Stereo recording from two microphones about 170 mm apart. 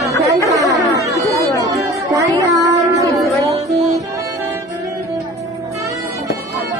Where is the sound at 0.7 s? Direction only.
20° right (ahead or behind).